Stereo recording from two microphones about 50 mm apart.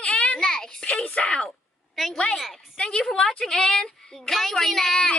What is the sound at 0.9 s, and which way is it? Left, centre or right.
Speech, left.